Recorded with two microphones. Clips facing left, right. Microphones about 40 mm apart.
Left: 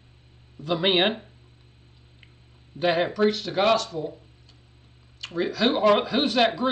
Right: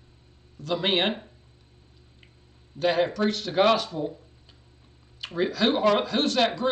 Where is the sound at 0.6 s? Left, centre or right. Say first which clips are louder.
Left 3 dB; centre.